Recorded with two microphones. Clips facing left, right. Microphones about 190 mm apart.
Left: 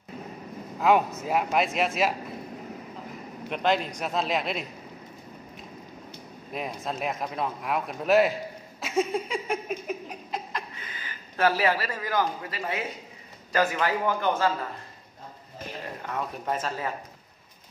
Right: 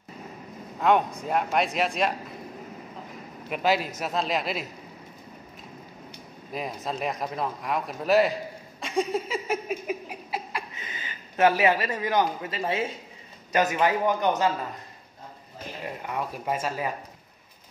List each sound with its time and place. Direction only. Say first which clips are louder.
0.7 s a man's voice: even; 5° left (ahead or behind)
3.4 s a man's voice: right 1 dB; 5° right (ahead or behind)
6.5 s a man's voice: right 1 dB; centre (ahead or behind)
8.8 s a sound: even; centre (ahead or behind)
10.8 s a man's voice: right 2 dB; 25° right (ahead or behind)
15.8 s speech: right 2 dB; 10° right (ahead or behind)